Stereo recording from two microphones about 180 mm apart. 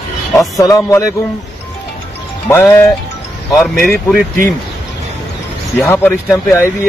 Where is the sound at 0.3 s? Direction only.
20° left (ahead or behind).